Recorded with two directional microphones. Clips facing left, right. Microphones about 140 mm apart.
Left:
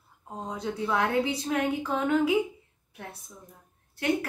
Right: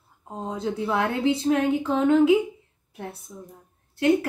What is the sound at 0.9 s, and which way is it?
A woman's voice, 25° right (ahead or behind).